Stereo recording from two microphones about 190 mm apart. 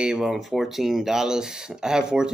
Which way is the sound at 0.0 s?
5° right (ahead or behind).